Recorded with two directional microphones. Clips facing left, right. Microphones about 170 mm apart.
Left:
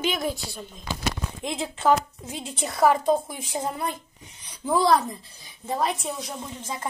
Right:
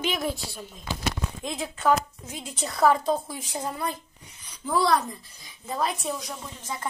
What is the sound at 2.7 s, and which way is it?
A woman's voice, 15° left (ahead or behind).